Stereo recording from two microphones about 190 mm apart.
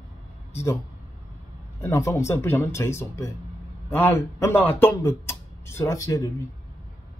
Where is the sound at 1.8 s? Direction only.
15° left (ahead or behind).